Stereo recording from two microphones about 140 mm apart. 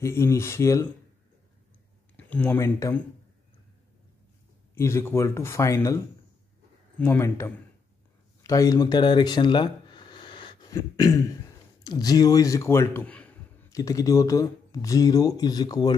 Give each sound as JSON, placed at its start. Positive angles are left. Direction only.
{"t": 0.0, "sound": "speech", "side_deg": 20}
{"t": 2.1, "sound": "speech", "side_deg": 10}
{"t": 4.7, "sound": "speech", "side_deg": 20}
{"t": 7.0, "sound": "speech", "side_deg": 15}
{"t": 13.7, "sound": "speech", "side_deg": 25}